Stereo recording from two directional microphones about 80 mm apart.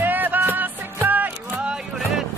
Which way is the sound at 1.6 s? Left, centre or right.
Centre.